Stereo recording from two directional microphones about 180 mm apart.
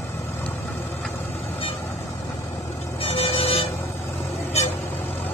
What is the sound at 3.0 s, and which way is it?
Vehicle, 30° left (ahead or behind).